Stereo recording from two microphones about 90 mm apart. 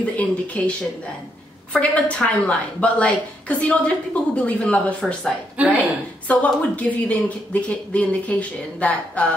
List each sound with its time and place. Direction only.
0.0 s a woman's voice: 15° left (ahead or behind)